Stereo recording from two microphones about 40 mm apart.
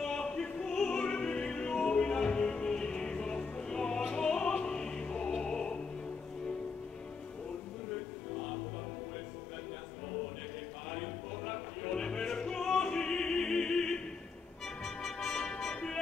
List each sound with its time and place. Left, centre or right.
0.0 s opera: centre
0.7 s music: centre
10.9 s music: centre